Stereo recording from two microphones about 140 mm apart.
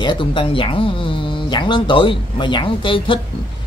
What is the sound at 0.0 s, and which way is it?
Speech, 35° left (ahead or behind).